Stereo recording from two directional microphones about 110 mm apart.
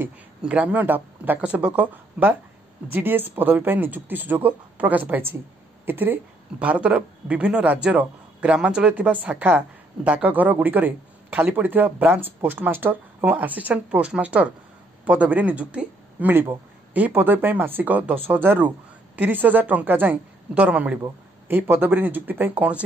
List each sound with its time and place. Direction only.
0.4 s a man's voice: 10° right (ahead or behind)